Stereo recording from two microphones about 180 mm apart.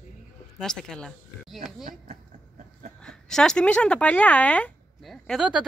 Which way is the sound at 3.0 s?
5° left (ahead or behind).